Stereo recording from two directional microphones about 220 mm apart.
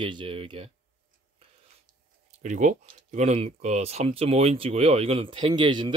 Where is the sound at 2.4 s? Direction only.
35° right (ahead or behind).